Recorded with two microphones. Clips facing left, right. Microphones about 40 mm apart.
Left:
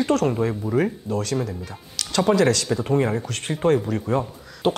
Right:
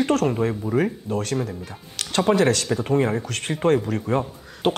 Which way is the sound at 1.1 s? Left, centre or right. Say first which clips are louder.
Even; right.